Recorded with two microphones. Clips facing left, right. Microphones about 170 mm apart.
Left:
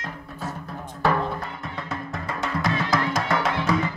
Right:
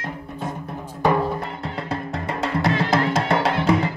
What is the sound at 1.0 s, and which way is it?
Music, 15° right (ahead or behind).